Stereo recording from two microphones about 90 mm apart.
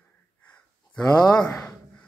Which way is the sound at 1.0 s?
45° left (ahead or behind).